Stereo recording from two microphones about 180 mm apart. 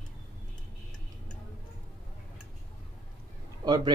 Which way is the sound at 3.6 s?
20° right (ahead or behind).